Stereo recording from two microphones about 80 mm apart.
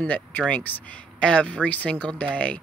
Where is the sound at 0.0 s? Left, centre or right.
Left.